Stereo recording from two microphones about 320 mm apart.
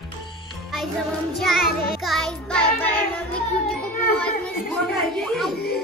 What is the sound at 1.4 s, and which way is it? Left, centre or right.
Child singing, centre.